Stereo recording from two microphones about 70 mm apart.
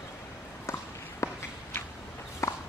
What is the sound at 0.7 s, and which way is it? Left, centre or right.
Walk, left.